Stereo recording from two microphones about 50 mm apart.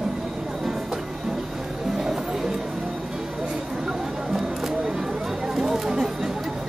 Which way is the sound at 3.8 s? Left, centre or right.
Centre.